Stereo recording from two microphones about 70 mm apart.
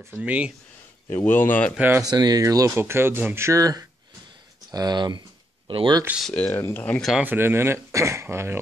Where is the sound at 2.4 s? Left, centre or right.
Right.